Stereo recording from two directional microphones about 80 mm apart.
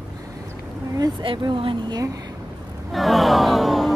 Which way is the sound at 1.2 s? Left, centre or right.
Right.